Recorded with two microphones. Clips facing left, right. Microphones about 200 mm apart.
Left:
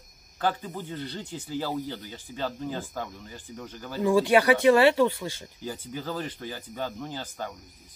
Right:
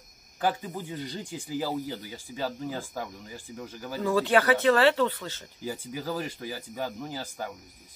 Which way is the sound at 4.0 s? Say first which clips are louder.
Left 3 dB; 15° left (ahead or behind).